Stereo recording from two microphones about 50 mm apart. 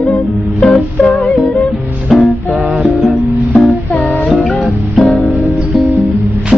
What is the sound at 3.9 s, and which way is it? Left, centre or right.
Music, left.